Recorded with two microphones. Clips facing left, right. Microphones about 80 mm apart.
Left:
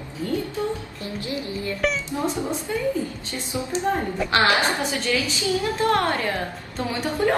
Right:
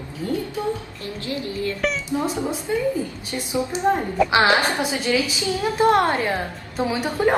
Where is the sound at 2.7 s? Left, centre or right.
Right.